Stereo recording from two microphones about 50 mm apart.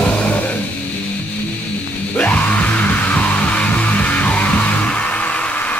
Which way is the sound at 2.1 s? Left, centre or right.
Left.